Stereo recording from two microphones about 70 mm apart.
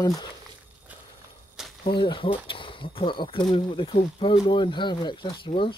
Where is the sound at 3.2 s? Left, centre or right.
Left.